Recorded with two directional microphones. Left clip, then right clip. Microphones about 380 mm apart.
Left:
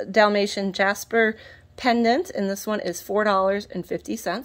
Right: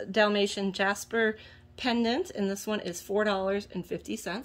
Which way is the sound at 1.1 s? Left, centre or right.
Left.